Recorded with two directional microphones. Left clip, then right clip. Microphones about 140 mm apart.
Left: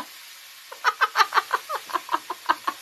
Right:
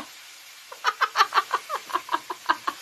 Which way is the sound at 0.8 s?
20° left (ahead or behind).